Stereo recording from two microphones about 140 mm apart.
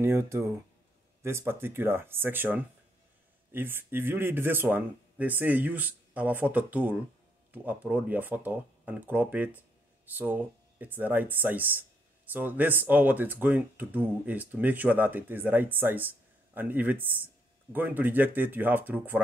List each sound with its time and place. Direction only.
0.0 s speech: 20° right (ahead or behind)